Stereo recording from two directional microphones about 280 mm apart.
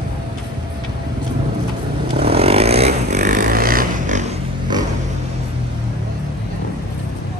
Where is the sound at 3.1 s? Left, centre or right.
Right.